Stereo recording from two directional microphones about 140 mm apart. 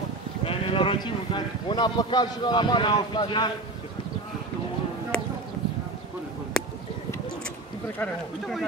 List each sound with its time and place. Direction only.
0.4 s speech: 40° left (ahead or behind)
5.1 s a sound: 10° left (ahead or behind)
8.0 s speech: centre (ahead or behind)